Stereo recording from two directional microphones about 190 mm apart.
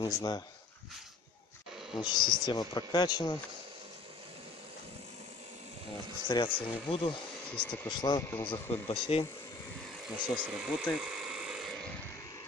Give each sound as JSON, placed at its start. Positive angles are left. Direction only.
{"t": 0.0, "sound": "speech", "side_deg": 20}
{"t": 2.0, "sound": "speech", "side_deg": 25}
{"t": 6.2, "sound": "speech", "side_deg": 25}
{"t": 7.5, "sound": "speech", "side_deg": 10}
{"t": 8.0, "sound": "speech", "side_deg": 20}
{"t": 8.3, "sound": "speech", "side_deg": 10}
{"t": 8.8, "sound": "speech", "side_deg": 25}
{"t": 10.3, "sound": "a sound", "side_deg": 0}